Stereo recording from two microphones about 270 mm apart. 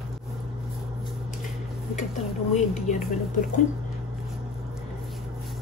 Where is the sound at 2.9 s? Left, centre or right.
Left.